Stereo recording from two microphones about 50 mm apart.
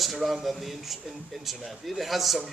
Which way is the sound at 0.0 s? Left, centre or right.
Centre.